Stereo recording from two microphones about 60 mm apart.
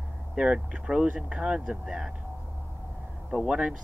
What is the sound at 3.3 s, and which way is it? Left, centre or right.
Speech, centre.